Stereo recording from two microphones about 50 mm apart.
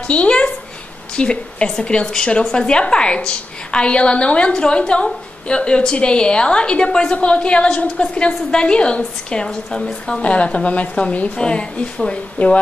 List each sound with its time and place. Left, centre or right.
0.0 s a woman's voice: left
10.2 s a woman's voice: left